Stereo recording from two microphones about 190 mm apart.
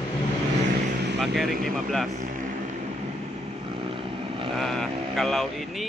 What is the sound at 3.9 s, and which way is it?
Vehicle, 25° right (ahead or behind).